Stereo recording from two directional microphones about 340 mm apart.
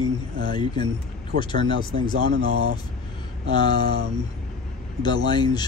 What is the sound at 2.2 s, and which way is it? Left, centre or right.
Speech, right.